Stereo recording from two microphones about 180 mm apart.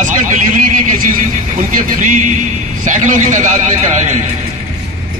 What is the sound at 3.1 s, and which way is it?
Speech, 45° right (ahead or behind).